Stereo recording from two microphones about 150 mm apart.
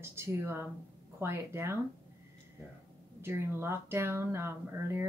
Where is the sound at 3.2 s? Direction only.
15° right (ahead or behind).